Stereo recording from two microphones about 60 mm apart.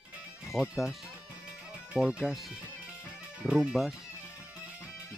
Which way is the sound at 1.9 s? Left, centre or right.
Centre.